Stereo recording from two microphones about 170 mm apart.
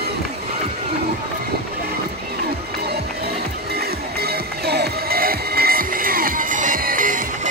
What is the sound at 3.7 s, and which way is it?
Music, 70° right (ahead or behind).